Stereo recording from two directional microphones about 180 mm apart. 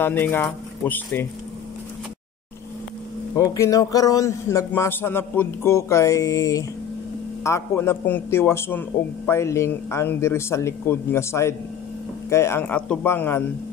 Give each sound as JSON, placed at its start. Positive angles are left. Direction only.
{"t": 0.0, "sound": "a man's voice", "side_deg": 10}
{"t": 3.3, "sound": "a man's voice", "side_deg": 15}